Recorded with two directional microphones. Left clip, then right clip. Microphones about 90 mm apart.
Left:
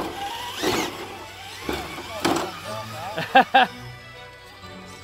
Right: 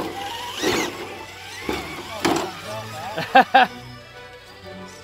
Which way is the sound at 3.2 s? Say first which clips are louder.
Right 2 dB; centre (ahead or behind).